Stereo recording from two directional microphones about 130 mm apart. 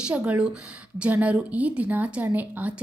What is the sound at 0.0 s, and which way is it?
A woman's voice, 10° right (ahead or behind).